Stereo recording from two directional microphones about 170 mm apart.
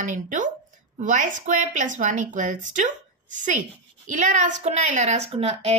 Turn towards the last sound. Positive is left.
turn(degrees=-35)  # may be behind; listen again after turning